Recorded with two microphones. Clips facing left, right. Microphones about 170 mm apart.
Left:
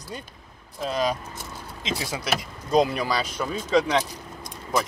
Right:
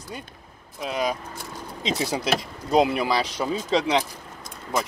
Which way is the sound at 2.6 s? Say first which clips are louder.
Right 1 dB; 20° right (ahead or behind).